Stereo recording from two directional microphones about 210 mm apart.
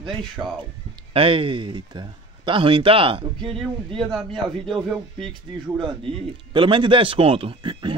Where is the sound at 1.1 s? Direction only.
25° right (ahead or behind).